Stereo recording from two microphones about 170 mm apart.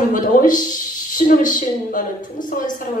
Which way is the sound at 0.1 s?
50° left (ahead or behind).